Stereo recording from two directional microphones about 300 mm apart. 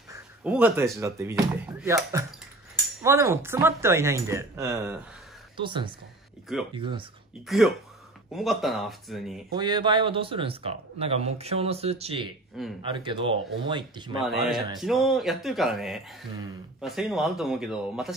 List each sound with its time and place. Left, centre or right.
0.1 s speech: centre
7.4 s a man's voice: centre
9.5 s speech: centre
14.8 s a man's voice: centre